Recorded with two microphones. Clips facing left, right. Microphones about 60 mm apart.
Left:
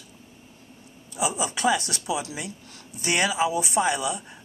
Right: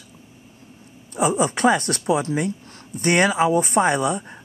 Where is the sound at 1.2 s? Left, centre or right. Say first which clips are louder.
Right 7 dB; right.